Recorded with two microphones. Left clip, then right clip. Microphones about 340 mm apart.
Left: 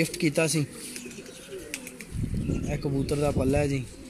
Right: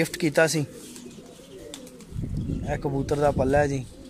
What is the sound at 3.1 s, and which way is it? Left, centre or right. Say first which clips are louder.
Speech: right 5 dB; right.